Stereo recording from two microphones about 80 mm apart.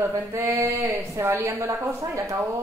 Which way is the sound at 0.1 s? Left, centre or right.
Right.